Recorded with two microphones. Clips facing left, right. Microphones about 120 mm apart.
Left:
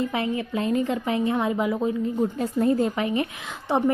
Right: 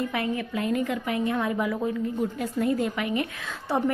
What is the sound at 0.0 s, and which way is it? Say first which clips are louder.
A woman's voice: left 2 dB; 25° left (ahead or behind).